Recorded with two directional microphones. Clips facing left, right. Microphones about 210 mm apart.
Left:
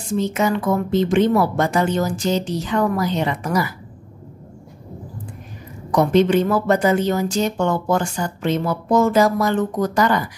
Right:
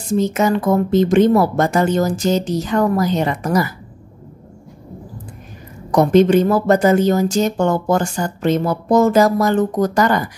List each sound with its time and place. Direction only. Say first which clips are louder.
0.1 s speech: right 3 dB; 45° right (ahead or behind)
5.9 s speech: right 4 dB; 45° right (ahead or behind)